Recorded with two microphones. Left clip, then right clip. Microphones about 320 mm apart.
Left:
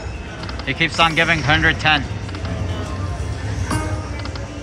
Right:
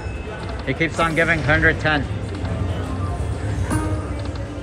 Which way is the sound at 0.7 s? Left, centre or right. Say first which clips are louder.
Left 4 dB; centre.